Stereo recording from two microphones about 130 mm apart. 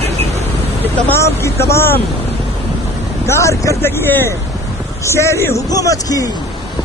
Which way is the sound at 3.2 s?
25° left (ahead or behind).